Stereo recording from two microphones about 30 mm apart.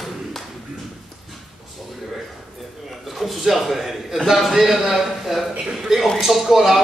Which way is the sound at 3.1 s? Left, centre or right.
Centre.